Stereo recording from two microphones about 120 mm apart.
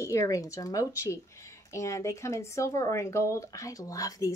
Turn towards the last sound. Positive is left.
turn(degrees=30)  # may be behind; listen again after turning